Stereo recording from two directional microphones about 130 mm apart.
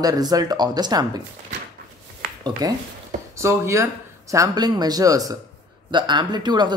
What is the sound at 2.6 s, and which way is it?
Speech, 30° right (ahead or behind).